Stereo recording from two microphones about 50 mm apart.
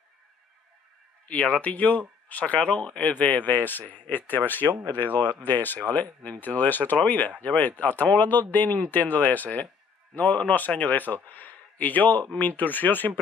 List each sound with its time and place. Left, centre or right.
1.2 s speech: left